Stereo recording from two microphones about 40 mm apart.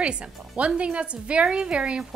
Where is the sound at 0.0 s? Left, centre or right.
Right.